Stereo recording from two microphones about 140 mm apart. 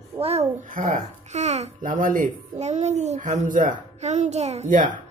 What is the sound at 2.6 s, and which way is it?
A child's voice, 55° right (ahead or behind).